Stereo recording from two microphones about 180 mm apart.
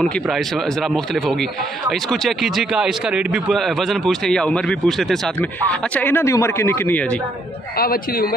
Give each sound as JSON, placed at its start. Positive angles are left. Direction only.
{"t": 0.0, "sound": "speech", "side_deg": 0}
{"t": 7.7, "sound": "a man's voice", "side_deg": 55}